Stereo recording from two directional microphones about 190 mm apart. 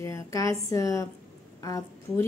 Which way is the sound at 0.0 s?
15° left (ahead or behind).